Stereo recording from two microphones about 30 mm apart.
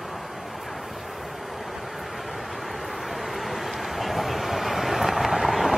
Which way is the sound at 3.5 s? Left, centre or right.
Centre.